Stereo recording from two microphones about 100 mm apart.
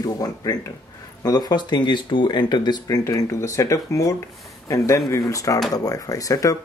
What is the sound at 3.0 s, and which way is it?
Speech, 30° left (ahead or behind).